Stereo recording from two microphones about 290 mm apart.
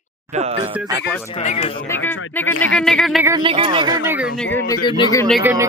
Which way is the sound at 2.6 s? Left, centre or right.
Centre.